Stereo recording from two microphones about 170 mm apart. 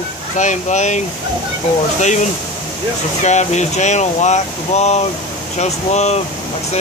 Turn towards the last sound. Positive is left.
turn(degrees=40)  # may be behind; listen again after turning